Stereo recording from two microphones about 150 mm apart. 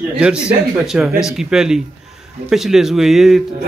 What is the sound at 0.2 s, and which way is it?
A man's voice, 5° right (ahead or behind).